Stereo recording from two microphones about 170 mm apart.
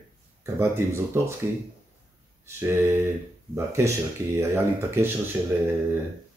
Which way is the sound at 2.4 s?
15° right (ahead or behind).